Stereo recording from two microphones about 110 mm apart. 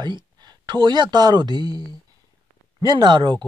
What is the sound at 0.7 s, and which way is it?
Speech, 40° right (ahead or behind).